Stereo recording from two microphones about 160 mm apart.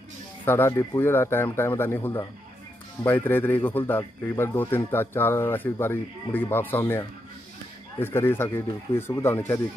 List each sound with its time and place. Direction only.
0.5 s speech: 15° left (ahead or behind)